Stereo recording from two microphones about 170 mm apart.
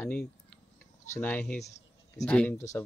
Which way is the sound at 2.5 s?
20° left (ahead or behind).